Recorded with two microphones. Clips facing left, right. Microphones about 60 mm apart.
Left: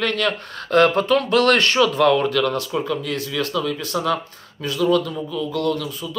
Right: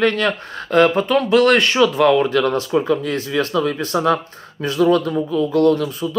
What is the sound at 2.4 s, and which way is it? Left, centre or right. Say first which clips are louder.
Speech: right 4 dB; right.